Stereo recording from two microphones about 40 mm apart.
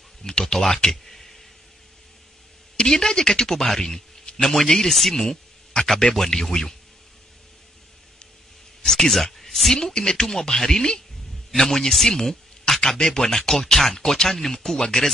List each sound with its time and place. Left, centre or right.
0.2 s speech: centre
1.0 s tick: centre
2.8 s a man's voice: centre
8.8 s a man's voice: centre